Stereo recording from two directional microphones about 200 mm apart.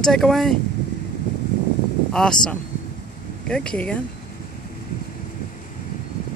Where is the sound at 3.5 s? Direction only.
5° left (ahead or behind).